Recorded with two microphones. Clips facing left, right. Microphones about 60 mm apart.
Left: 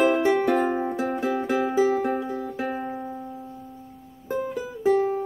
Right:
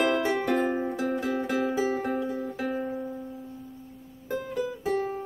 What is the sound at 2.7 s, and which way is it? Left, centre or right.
Music, left.